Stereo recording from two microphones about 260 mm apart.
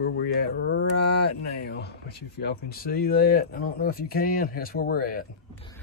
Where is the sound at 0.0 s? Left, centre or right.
Left.